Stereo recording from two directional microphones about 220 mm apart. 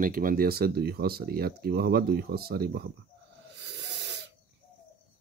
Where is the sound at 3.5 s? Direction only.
50° right (ahead or behind).